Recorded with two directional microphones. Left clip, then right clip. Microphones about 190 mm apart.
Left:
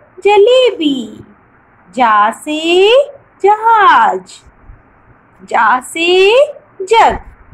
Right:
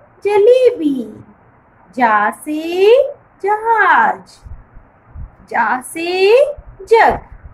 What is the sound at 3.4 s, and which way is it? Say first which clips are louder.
Speech: left 5 dB; 10° left (ahead or behind).